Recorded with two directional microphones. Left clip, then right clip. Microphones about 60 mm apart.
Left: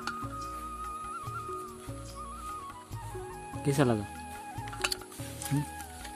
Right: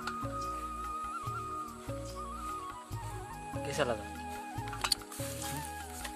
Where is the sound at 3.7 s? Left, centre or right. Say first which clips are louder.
Left 5 dB; left.